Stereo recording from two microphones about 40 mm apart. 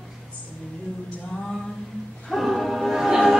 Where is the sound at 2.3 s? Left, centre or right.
Centre.